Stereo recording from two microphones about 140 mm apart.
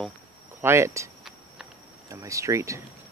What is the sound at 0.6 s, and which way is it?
Speech, 20° right (ahead or behind).